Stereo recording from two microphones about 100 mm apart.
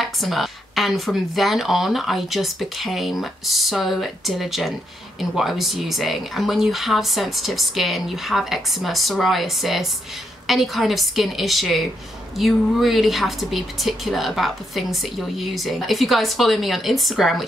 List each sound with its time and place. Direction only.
0.0 s a woman's voice: centre (ahead or behind)